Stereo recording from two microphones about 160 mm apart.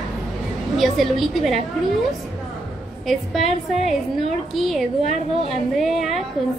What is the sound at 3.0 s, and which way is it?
A woman's voice, centre (ahead or behind).